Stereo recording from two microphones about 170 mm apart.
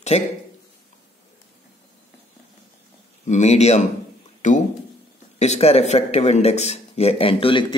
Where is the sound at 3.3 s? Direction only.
40° left (ahead or behind).